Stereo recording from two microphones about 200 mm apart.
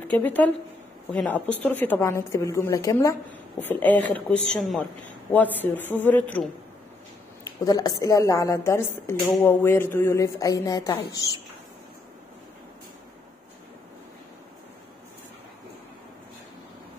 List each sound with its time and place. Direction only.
0.1 s a woman's voice: 10° left (ahead or behind)
7.6 s a woman's voice: 20° left (ahead or behind)